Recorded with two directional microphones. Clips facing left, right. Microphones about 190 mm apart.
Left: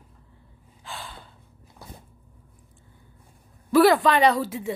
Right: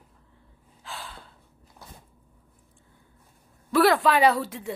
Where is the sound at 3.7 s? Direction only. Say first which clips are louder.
Left 3 dB; centre (ahead or behind).